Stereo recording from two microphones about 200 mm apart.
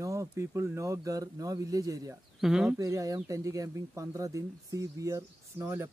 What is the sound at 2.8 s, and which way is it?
Speech, 15° right (ahead or behind).